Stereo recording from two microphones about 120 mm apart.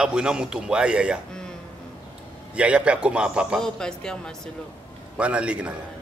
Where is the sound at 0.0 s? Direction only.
5° right (ahead or behind).